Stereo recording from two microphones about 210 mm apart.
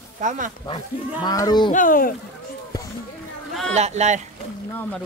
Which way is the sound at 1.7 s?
40° left (ahead or behind).